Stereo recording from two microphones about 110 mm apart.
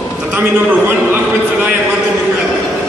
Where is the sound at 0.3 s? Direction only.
20° right (ahead or behind).